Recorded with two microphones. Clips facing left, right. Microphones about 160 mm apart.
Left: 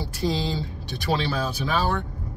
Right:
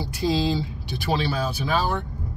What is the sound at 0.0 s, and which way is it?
Speech, 10° right (ahead or behind).